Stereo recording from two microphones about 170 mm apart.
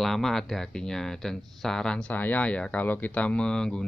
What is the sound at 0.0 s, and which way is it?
Speech, centre (ahead or behind).